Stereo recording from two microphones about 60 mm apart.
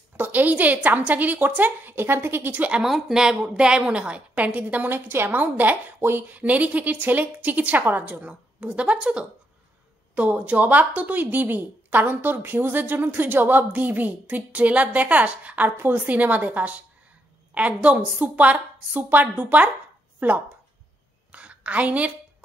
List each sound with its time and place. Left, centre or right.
0.2 s a woman's voice: right
2.8 s a woman's voice: centre; by 20.4 s right
21.3 s a sound: right